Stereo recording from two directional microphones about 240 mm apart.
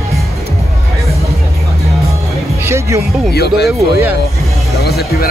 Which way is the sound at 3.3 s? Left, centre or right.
Left.